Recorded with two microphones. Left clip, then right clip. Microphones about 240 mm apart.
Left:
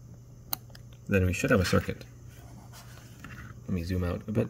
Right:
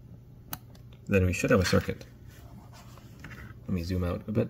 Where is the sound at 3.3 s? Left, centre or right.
Centre.